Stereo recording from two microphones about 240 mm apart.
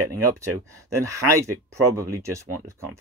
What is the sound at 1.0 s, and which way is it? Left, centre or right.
Speech, centre.